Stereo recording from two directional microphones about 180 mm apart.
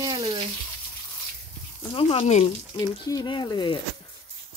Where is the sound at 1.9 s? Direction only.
30° left (ahead or behind).